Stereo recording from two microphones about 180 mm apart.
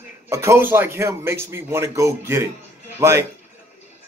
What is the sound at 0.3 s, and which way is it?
A man's voice, 15° right (ahead or behind).